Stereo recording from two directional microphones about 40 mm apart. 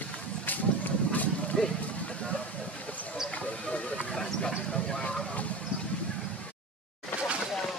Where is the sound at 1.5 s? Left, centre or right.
Centre.